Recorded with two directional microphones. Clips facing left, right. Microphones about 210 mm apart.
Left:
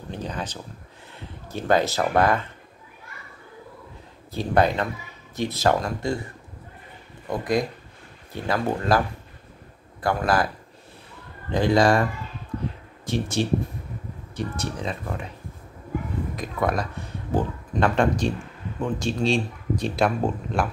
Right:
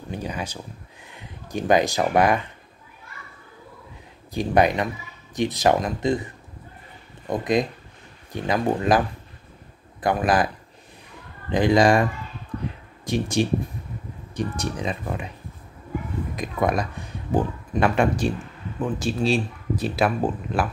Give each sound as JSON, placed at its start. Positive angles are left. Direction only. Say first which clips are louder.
{"t": 0.1, "sound": "a sound", "louder": "right 1 dB", "side_deg": -10}
{"t": 1.1, "sound": "speech", "louder": "right 3 dB", "side_deg": -15}
{"t": 4.3, "sound": "speech", "louder": "right 2 dB", "side_deg": -15}
{"t": 7.2, "sound": "speech", "louder": "right 2 dB", "side_deg": -20}
{"t": 10.0, "sound": "speech", "louder": "right 2 dB", "side_deg": -15}
{"t": 11.5, "sound": "speech", "louder": "right 2 dB", "side_deg": -15}
{"t": 16.3, "sound": "speech", "louder": "right 3 dB", "side_deg": -15}